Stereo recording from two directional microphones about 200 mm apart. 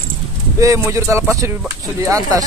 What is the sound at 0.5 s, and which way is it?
Speech, 15° right (ahead or behind).